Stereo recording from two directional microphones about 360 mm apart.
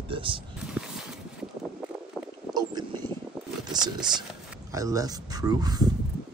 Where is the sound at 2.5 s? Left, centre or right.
Centre.